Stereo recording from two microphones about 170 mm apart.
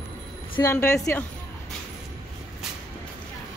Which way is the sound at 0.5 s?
20° left (ahead or behind).